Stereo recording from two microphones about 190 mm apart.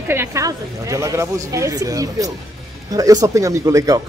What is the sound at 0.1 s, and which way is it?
Speech, 15° right (ahead or behind).